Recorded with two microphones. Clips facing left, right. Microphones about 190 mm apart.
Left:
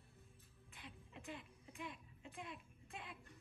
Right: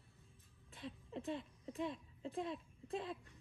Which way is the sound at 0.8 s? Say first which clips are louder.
Right 10 dB; 30° right (ahead or behind).